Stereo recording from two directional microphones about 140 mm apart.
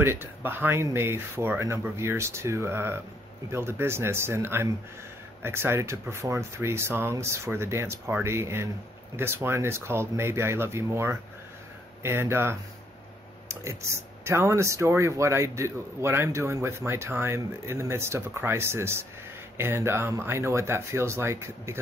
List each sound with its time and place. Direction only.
0.0 s speech: 15° right (ahead or behind)
14.2 s speech: 20° right (ahead or behind)